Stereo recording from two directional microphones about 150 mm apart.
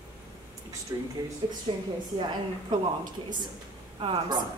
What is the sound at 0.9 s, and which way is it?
Speech, 25° right (ahead or behind).